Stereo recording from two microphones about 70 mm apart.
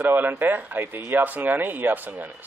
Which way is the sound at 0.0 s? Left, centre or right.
Right.